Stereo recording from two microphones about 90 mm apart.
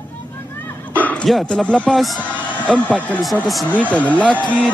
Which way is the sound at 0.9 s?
15° left (ahead or behind).